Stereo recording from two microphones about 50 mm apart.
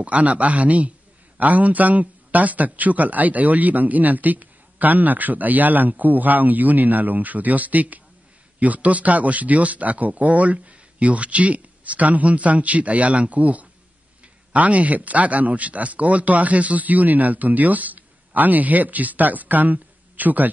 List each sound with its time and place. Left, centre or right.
0.0 s a man's voice: right